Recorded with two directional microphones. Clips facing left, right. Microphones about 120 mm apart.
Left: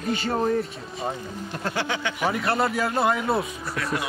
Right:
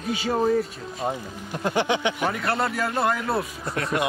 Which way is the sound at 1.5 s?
15° right (ahead or behind).